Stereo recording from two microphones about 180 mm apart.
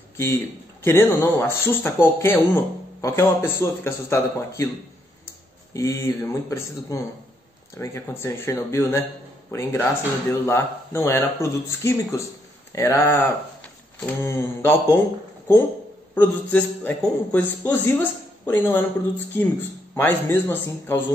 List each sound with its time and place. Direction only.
0.8 s a man's voice: 10° left (ahead or behind)
5.7 s a man's voice: 15° left (ahead or behind)
16.2 s a man's voice: 10° left (ahead or behind)